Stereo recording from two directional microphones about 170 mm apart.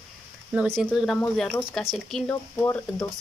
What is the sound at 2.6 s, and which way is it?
Speech, 15° left (ahead or behind).